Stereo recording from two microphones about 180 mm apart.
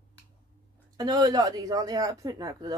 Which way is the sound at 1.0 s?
20° right (ahead or behind).